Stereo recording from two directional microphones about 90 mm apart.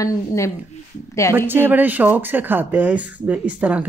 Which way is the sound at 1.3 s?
25° right (ahead or behind).